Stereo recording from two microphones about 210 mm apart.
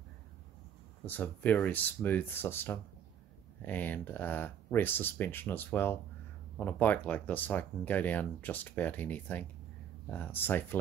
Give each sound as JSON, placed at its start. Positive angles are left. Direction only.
{"t": 1.0, "sound": "speech", "side_deg": 10}